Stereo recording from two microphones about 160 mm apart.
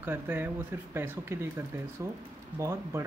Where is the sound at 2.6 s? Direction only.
15° right (ahead or behind).